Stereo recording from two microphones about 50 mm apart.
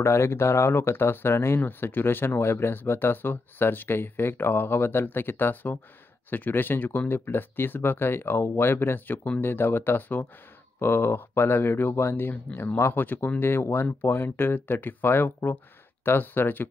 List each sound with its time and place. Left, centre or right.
0.0 s speech: left
1.6 s speech: left
10.8 s speech: left